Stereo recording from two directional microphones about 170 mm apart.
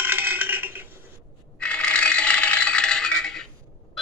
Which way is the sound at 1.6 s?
5° left (ahead or behind).